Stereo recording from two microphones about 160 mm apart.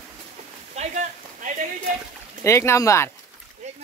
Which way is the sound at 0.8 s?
50° right (ahead or behind).